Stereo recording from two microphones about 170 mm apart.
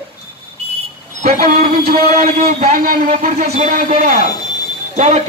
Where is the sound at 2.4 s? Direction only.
45° right (ahead or behind).